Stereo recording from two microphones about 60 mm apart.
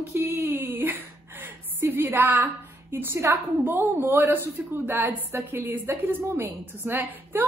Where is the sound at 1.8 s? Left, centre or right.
Right.